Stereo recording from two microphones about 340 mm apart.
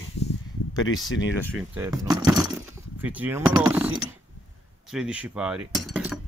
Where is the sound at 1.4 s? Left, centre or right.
Centre.